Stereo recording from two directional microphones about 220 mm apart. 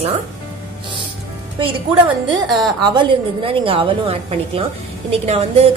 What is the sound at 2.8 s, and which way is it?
A woman's voice, 20° right (ahead or behind).